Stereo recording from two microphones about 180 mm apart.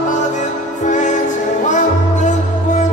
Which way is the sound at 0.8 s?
45° left (ahead or behind).